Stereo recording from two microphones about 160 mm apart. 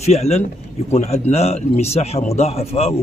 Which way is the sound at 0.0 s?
40° left (ahead or behind).